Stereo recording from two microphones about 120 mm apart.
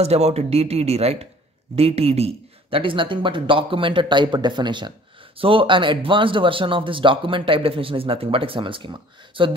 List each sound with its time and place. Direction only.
0.0 s speech: 60° right (ahead or behind); by 9.5 s 45° right (ahead or behind)